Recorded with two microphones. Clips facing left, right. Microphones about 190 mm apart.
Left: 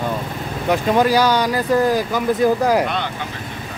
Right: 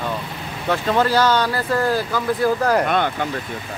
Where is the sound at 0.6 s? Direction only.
15° left (ahead or behind).